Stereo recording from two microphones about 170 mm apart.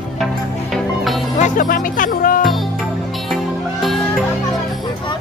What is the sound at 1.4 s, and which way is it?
Speech, 50° left (ahead or behind).